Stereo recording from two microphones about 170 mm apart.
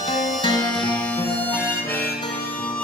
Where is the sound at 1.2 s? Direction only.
10° left (ahead or behind).